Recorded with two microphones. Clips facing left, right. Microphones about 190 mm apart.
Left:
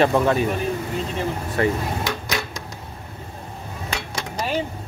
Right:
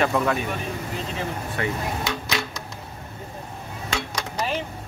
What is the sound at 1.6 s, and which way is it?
Speech, 35° left (ahead or behind).